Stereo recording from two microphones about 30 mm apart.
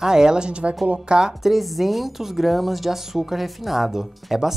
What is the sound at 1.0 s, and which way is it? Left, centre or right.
Speech, right.